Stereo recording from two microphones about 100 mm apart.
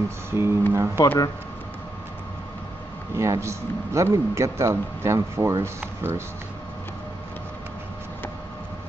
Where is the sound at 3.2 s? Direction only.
30° right (ahead or behind).